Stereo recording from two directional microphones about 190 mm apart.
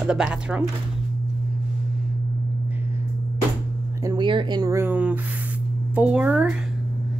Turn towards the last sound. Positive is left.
turn(degrees=-5)  # may be behind; listen again after turning